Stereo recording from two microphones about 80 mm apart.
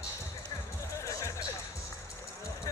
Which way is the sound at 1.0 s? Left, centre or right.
Left.